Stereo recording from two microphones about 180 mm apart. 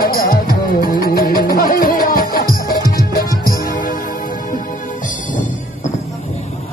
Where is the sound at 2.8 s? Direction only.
20° right (ahead or behind).